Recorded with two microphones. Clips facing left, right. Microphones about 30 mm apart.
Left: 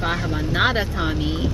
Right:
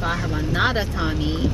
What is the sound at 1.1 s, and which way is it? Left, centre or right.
Speech, centre.